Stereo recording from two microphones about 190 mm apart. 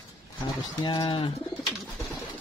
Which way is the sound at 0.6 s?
20° left (ahead or behind).